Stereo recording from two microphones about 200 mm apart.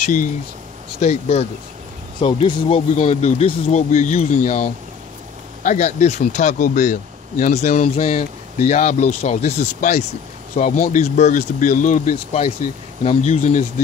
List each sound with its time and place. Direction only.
0.0 s speech: 40° left (ahead or behind)